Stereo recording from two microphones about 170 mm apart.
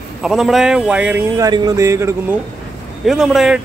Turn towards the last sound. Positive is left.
turn(degrees=0)  # may be behind; listen again after turning